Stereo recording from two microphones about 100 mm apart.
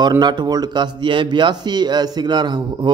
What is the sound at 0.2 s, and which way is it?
A man's voice, 45° right (ahead or behind).